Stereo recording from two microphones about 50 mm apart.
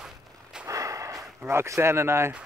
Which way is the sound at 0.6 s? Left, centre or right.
Right.